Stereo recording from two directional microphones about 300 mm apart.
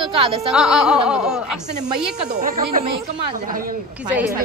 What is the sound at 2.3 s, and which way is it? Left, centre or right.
A woman's voice, right.